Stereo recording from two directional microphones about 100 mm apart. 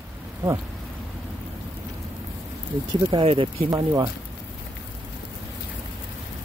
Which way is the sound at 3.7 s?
35° right (ahead or behind).